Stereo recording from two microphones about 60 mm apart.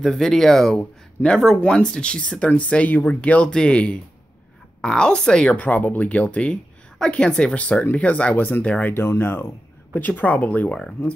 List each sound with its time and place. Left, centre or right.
0.0 s speech: centre
0.7 s speech: centre; by 8.6 s left
8.6 s speech: centre
8.9 s speech: left
9.9 s speech: left